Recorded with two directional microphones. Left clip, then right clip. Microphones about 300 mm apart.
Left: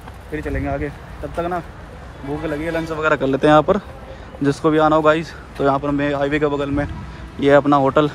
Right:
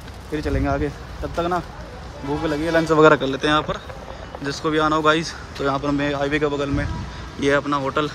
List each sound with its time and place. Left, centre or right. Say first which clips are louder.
0.3 s speech: right 1 dB; centre
2.7 s a man's voice: right 5 dB; right
3.0 s speech: right 1 dB; centre